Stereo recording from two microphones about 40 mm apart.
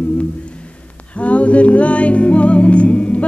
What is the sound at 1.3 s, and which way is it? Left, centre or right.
Music, left.